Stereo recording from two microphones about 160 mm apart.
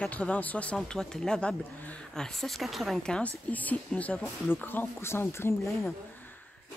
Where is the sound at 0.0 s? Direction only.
5° left (ahead or behind).